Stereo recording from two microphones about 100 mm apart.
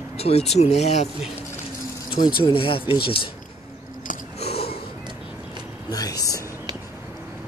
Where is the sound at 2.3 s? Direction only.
65° left (ahead or behind).